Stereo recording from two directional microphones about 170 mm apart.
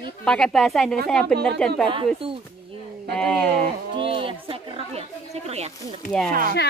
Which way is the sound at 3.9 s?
30° right (ahead or behind).